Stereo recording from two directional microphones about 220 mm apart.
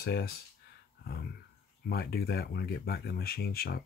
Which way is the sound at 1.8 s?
45° left (ahead or behind).